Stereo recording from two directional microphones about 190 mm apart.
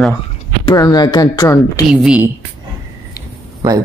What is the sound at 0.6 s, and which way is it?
A woman's voice, 20° left (ahead or behind).